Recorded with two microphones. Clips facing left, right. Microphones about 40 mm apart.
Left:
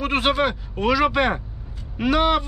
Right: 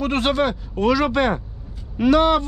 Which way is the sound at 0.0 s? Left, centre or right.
Centre.